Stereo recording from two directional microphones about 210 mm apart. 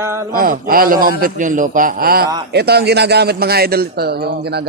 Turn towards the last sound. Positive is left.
turn(degrees=-50)  # may be behind; listen again after turning